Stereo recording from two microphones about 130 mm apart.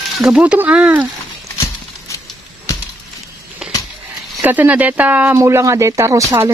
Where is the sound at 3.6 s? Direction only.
5° right (ahead or behind).